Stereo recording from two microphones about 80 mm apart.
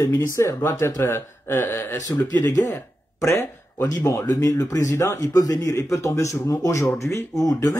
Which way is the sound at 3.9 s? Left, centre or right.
Left.